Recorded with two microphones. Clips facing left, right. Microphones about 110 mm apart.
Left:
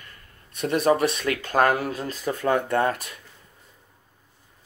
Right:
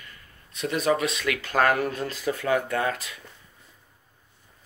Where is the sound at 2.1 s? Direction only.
40° left (ahead or behind).